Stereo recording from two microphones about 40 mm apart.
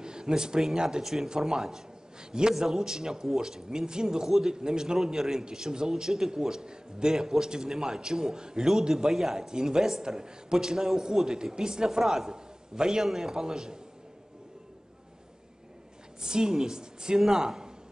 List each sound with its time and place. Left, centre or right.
0.0 s a man's voice: centre
16.2 s a man's voice: centre